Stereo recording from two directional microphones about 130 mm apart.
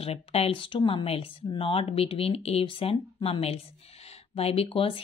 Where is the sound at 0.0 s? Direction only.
50° left (ahead or behind).